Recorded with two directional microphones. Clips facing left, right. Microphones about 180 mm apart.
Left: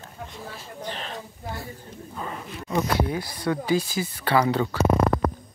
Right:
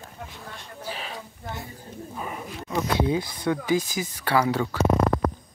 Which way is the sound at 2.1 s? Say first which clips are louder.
Left 1 dB; 10° right (ahead or behind).